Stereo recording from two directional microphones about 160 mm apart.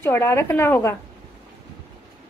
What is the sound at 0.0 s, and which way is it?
Speech, 15° left (ahead or behind).